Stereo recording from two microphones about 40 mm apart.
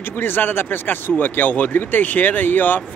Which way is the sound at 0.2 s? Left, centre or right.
Left.